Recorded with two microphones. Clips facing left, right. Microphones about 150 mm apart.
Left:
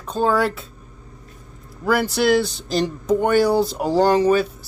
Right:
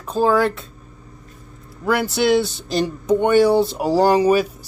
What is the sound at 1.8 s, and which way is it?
Speech, centre (ahead or behind).